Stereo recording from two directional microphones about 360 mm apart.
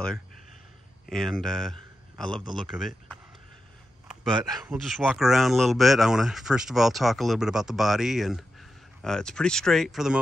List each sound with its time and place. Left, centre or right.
1.0 s a man's voice: centre